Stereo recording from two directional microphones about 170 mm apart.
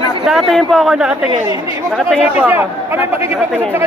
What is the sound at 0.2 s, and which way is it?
Speech, centre (ahead or behind).